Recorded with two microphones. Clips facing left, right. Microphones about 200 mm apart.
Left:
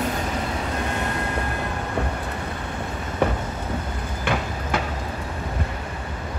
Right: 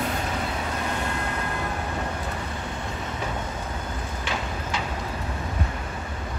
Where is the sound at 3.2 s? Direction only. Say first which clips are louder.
Left 11 dB; 65° left (ahead or behind).